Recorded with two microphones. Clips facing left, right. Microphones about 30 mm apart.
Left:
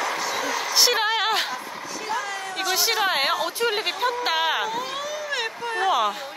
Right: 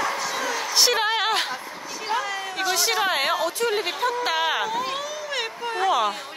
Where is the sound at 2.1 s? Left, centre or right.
Centre.